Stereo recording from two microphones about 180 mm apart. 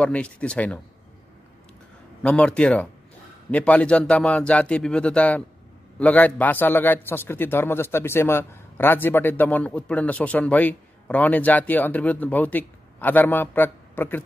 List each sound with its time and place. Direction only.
0.0 s a man's voice: 5° left (ahead or behind)
2.2 s a man's voice: 5° left (ahead or behind)